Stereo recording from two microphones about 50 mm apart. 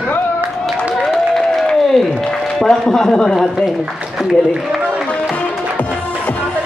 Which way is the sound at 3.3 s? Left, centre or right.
Centre.